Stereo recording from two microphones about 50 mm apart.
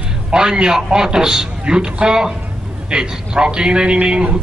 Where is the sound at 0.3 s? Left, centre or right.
Centre.